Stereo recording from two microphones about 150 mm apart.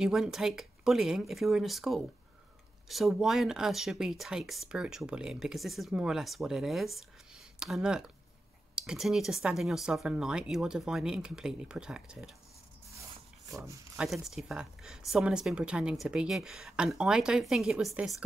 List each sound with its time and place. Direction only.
0.0 s a woman's voice: 5° right (ahead or behind)
13.5 s speech: 20° right (ahead or behind)
13.9 s a woman's voice: centre (ahead or behind)